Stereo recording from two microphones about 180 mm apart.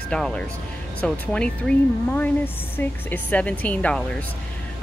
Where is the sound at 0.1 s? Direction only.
5° left (ahead or behind).